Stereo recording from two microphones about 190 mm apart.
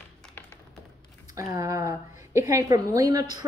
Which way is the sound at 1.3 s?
15° right (ahead or behind).